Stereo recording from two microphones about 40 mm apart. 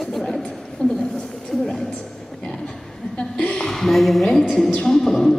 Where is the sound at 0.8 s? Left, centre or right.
Left.